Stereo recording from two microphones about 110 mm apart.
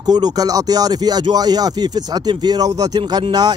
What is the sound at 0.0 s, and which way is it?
Speech, 40° right (ahead or behind).